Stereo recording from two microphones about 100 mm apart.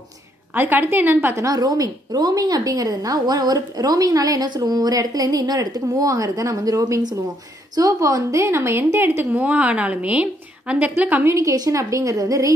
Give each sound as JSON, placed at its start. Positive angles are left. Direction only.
{"t": 0.6, "sound": "speech", "side_deg": -20}
{"t": 1.4, "sound": "a woman's voice", "side_deg": -35}
{"t": 11.3, "sound": "a woman's voice", "side_deg": -35}